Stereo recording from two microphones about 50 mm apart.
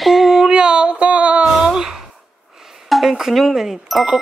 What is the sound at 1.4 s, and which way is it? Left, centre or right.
Speech, centre.